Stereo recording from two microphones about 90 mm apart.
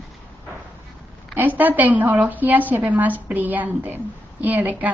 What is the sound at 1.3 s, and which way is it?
A woman's voice, 20° right (ahead or behind).